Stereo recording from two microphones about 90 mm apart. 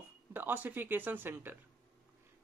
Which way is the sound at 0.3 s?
20° right (ahead or behind).